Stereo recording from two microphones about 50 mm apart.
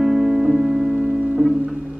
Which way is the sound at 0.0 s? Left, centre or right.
Centre.